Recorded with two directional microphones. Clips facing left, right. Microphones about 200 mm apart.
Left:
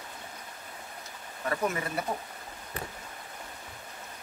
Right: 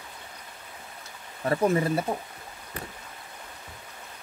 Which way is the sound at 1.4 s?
30° right (ahead or behind).